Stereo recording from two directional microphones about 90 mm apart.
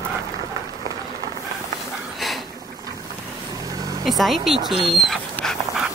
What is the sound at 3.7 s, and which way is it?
Vehicle, 45° right (ahead or behind).